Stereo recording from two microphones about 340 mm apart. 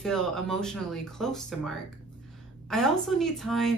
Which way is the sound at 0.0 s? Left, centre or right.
Centre.